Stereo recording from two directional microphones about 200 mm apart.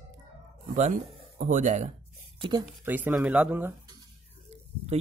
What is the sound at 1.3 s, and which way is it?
Speech, 40° right (ahead or behind).